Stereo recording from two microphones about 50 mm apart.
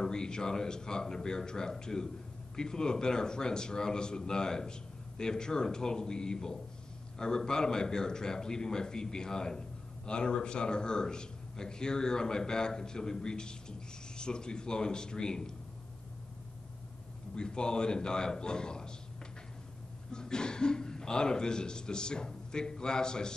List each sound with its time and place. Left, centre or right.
0.0 s a man's voice: centre
17.4 s a man's voice: centre
20.1 s speech: centre